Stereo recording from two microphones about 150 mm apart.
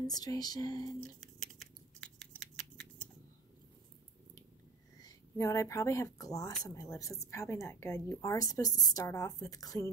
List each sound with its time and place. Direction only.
0.0 s a woman's voice: 25° left (ahead or behind)
1.2 s a sound: centre (ahead or behind)
5.0 s a woman's voice: 20° left (ahead or behind)